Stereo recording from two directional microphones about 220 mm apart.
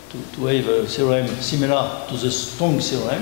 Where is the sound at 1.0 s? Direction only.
20° left (ahead or behind).